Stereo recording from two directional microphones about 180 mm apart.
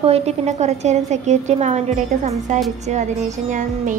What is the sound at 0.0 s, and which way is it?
A woman's voice, 35° right (ahead or behind).